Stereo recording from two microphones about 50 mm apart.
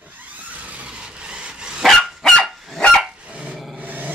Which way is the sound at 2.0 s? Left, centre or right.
Centre.